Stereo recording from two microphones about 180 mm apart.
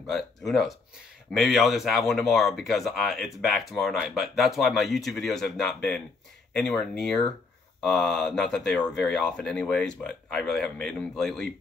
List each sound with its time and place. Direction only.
0.0 s speech: centre (ahead or behind)